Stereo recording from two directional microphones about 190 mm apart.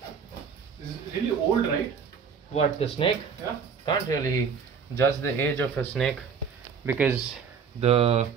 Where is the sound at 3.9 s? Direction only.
20° left (ahead or behind).